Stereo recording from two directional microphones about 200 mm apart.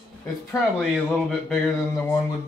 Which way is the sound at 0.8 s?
5° left (ahead or behind).